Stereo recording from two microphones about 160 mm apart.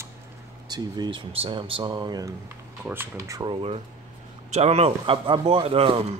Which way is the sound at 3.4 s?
35° right (ahead or behind).